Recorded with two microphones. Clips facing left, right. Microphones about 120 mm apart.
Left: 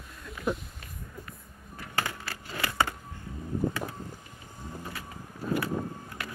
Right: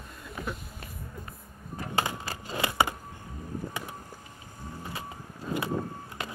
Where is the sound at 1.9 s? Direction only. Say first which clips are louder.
Right 2 dB; 20° right (ahead or behind).